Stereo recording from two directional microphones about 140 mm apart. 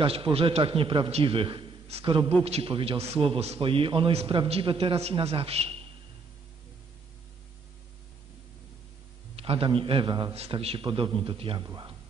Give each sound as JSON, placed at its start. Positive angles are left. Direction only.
{"t": 0.0, "sound": "a man's voice", "side_deg": -40}
{"t": 9.3, "sound": "a man's voice", "side_deg": -40}
{"t": 10.3, "sound": "a man's voice", "side_deg": -45}